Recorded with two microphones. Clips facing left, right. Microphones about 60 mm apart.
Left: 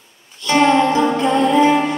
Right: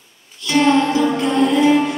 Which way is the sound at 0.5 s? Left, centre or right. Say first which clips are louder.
Left 1 dB; left.